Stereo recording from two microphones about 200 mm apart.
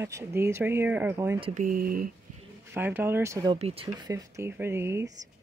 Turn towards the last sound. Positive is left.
turn(degrees=-10)  # may be behind; listen again after turning